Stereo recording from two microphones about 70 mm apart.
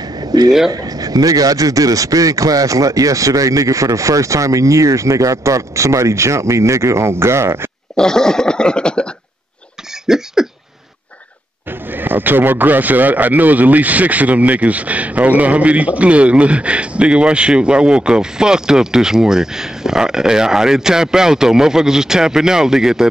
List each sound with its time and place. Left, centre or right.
0.3 s speech: right
7.9 s a sound: centre
10.0 s cough: centre
11.9 s a man's voice: right; by 23.0 s centre